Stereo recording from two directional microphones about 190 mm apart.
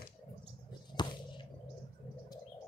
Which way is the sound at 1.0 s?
25° left (ahead or behind).